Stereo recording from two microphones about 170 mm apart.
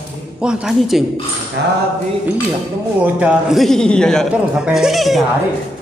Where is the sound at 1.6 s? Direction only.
80° right.